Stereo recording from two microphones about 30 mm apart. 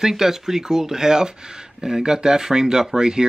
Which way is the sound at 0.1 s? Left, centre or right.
Centre.